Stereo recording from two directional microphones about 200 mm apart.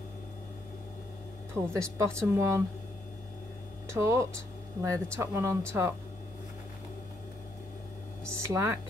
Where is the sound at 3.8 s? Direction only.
15° right (ahead or behind).